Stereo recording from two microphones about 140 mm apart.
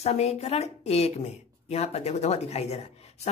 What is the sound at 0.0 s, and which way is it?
Speech, 50° left (ahead or behind).